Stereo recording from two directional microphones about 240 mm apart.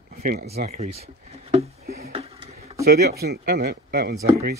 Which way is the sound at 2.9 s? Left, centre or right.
Right.